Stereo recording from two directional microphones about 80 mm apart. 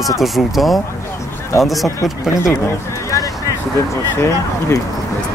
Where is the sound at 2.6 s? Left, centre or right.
Left.